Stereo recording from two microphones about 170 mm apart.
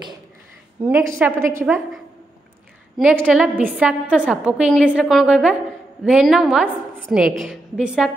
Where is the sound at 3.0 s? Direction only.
5° right (ahead or behind).